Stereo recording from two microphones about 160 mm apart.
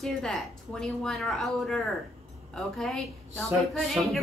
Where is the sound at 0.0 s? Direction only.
5° left (ahead or behind).